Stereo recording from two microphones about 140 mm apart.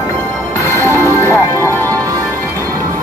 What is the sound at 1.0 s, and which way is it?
Music, 15° left (ahead or behind).